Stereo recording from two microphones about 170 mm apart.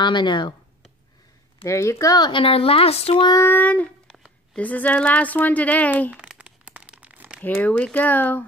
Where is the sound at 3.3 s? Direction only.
15° left (ahead or behind).